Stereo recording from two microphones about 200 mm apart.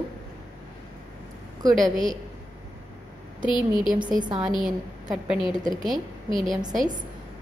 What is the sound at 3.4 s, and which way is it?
Speech, 25° left (ahead or behind).